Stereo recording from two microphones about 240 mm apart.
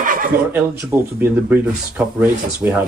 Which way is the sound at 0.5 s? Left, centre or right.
Centre.